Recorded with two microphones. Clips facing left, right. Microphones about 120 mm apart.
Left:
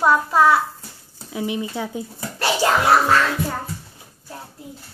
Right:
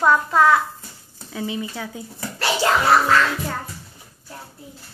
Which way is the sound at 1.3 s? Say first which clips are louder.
Left 2 dB; 15° left (ahead or behind).